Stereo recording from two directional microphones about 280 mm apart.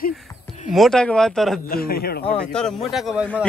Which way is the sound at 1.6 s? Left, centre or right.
Left.